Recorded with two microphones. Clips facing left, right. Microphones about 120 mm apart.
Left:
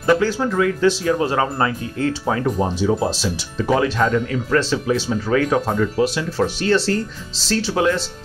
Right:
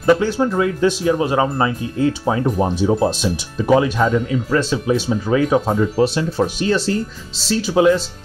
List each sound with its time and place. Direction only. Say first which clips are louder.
0.1 s speech: right 2 dB; 20° right (ahead or behind)
6.0 s speech: right 3 dB; 30° right (ahead or behind)
6.3 s speech: even; 15° right (ahead or behind)